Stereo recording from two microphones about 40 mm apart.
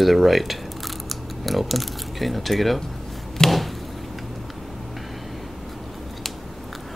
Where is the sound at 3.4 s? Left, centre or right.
Centre.